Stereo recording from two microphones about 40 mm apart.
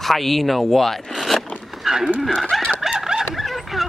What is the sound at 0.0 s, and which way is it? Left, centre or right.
Speech, centre.